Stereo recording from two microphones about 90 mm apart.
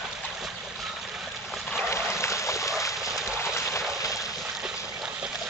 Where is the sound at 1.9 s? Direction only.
30° left (ahead or behind).